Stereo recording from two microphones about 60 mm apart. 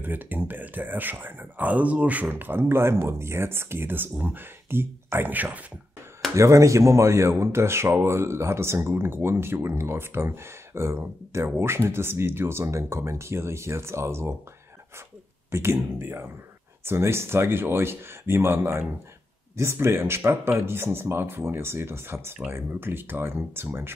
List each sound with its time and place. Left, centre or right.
0.0 s speech: right
6.3 s speech: right
11.4 s speech: right
15.5 s speech: right
16.0 s speech: right